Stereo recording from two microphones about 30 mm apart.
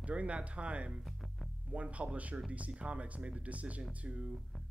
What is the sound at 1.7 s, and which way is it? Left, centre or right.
Speech, right.